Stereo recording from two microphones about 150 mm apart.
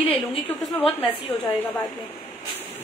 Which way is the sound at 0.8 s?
10° left (ahead or behind).